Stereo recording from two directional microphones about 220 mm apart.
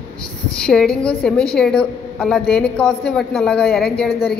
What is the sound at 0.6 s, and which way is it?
A woman's voice, 5° left (ahead or behind).